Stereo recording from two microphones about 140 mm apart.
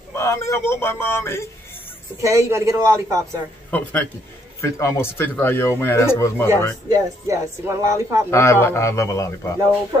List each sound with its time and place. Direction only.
0.1 s speech: 20° left (ahead or behind)
2.2 s a man's voice: 20° right (ahead or behind)
3.7 s speech: 10° left (ahead or behind)
7.2 s a man's voice: 20° right (ahead or behind)
8.3 s a man's voice: 20° left (ahead or behind)